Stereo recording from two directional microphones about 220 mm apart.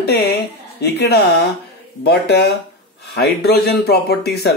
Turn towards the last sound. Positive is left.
turn(degrees=45)  # may be behind; listen again after turning